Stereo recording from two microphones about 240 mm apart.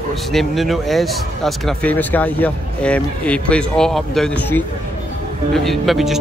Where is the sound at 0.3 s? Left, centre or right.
Centre.